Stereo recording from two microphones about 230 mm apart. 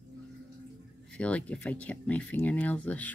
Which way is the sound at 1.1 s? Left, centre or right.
Centre.